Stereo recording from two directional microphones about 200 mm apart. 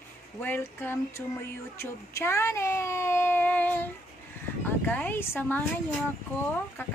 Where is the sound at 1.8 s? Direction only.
10° left (ahead or behind).